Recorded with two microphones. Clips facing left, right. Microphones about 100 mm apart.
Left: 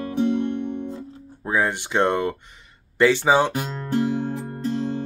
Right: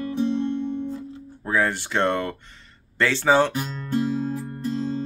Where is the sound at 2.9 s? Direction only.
15° left (ahead or behind).